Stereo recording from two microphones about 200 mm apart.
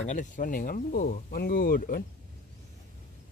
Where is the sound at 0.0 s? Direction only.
40° left (ahead or behind).